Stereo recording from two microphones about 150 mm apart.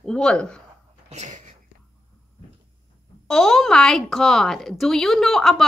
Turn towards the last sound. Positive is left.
turn(degrees=0)  # may be behind; listen again after turning